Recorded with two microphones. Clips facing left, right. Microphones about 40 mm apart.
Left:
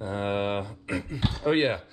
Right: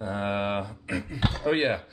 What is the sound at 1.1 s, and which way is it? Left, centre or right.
Speech, right.